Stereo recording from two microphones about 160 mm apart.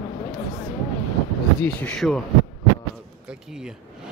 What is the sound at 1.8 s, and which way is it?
Speech, 5° left (ahead or behind).